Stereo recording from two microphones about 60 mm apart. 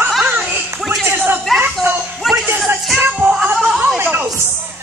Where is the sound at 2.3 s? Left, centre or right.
Centre.